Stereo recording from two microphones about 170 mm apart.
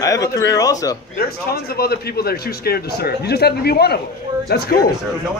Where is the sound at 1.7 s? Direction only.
65° left (ahead or behind).